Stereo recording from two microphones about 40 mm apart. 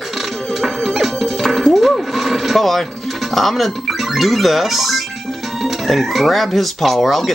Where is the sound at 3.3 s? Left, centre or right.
Centre.